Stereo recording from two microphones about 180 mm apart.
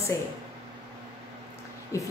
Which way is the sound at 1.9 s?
15° left (ahead or behind).